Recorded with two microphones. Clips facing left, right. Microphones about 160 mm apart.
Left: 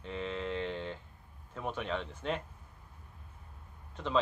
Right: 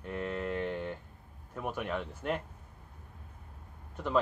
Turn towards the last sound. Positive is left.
turn(degrees=-10)  # may be behind; listen again after turning